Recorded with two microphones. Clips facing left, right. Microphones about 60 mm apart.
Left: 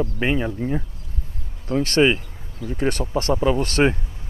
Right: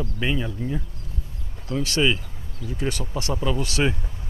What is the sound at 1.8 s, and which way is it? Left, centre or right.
Speech, left.